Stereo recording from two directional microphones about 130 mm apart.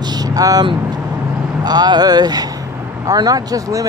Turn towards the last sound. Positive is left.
turn(degrees=-25)  # may be behind; listen again after turning